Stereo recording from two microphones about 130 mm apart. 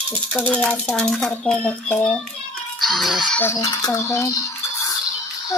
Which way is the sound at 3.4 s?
25° left (ahead or behind).